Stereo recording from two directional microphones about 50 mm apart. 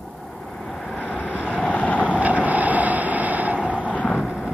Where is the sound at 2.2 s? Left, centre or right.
Right.